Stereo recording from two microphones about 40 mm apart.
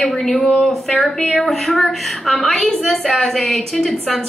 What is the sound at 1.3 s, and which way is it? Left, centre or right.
A woman's voice, centre.